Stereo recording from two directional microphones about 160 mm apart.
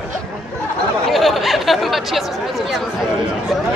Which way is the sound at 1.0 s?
Centre (ahead or behind).